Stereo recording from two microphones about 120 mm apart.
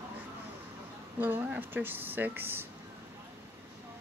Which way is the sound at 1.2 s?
15° right (ahead or behind).